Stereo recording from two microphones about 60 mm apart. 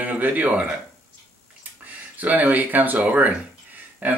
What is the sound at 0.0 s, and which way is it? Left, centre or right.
Speech, right.